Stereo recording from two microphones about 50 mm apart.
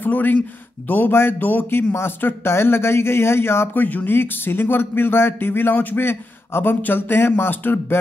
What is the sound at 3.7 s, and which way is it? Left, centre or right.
Speech, left.